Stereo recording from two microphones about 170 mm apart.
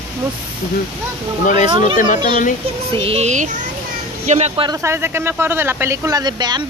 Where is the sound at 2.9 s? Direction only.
35° right (ahead or behind).